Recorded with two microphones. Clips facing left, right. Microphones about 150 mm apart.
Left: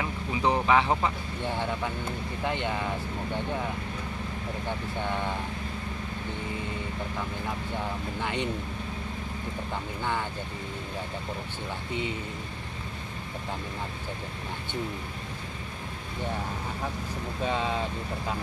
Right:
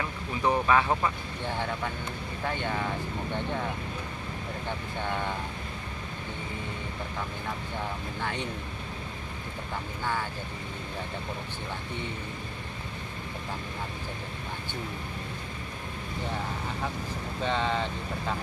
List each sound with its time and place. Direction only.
0.0 s speech: 15° left (ahead or behind)
2.4 s speech: 15° left (ahead or behind)
17.5 s speech: 5° left (ahead or behind)